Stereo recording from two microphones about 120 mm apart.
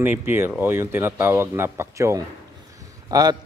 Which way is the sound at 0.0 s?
15° right (ahead or behind).